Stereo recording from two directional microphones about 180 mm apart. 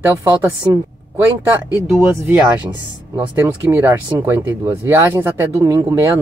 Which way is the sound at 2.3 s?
10° right (ahead or behind).